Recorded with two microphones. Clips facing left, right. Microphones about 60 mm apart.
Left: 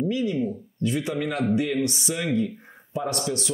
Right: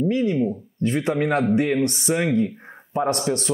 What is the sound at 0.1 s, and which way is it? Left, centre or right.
Speech, right.